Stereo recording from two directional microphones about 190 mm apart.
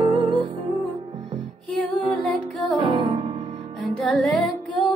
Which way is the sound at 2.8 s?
25° right (ahead or behind).